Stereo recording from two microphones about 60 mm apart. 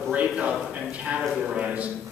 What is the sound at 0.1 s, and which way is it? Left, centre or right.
A man's voice, centre.